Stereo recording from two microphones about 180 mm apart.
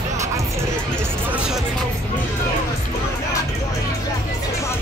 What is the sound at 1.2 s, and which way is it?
Music, 5° right (ahead or behind).